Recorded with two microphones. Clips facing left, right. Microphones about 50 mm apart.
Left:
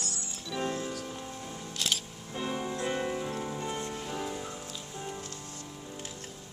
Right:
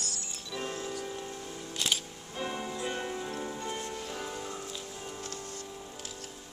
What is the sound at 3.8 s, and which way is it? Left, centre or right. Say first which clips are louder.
Music: left 1 dB; left.